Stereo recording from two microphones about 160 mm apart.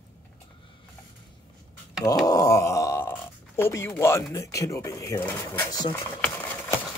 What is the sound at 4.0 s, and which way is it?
Speech, 20° left (ahead or behind).